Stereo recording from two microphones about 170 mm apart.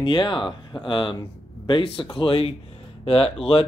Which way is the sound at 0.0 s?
30° left (ahead or behind).